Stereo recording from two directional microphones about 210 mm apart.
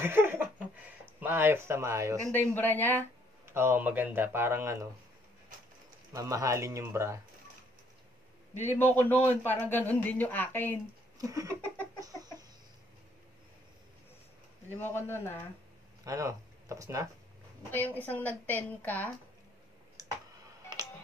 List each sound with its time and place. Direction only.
0.0 s a sound: 10° right (ahead or behind)
1.2 s a man's voice: 10° right (ahead or behind)
2.3 s a man's voice: 10° left (ahead or behind)
3.4 s a man's voice: 10° right (ahead or behind)
6.1 s a man's voice: 15° right (ahead or behind)
8.5 s a man's voice: 10° left (ahead or behind)
11.1 s a man's voice: 15° right (ahead or behind)
12.0 s chicken: 15° right (ahead or behind)
14.8 s a man's voice: 10° left (ahead or behind)
16.0 s speech: 15° right (ahead or behind)
17.7 s a man's voice: 10° left (ahead or behind)